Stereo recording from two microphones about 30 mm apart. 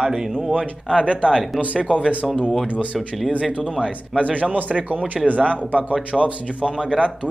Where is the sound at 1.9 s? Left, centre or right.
Right.